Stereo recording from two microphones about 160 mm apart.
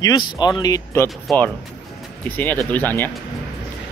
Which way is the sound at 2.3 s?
10° left (ahead or behind).